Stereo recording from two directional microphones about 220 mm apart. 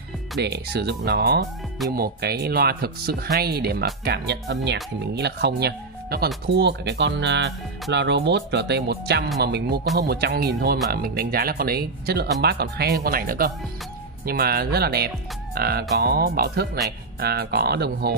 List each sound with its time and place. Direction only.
0.4 s speech: 50° right (ahead or behind)
15.5 s music: 45° right (ahead or behind)
16.0 s speech: 45° right (ahead or behind)